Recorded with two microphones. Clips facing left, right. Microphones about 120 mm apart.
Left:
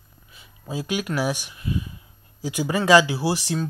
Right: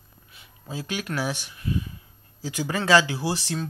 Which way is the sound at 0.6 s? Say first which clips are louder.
Left 5 dB; 10° left (ahead or behind).